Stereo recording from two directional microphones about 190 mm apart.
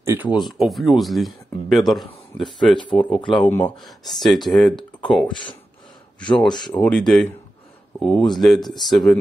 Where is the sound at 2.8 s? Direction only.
25° left (ahead or behind).